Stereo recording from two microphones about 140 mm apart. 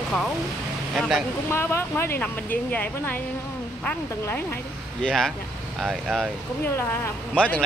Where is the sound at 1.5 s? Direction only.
15° left (ahead or behind).